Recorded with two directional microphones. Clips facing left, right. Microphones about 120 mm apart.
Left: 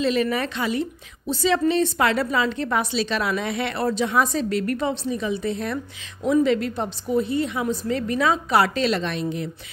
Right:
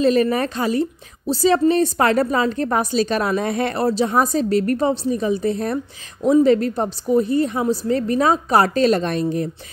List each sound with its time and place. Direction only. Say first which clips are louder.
0.0 s a woman's voice: right 5 dB; 40° right (ahead or behind)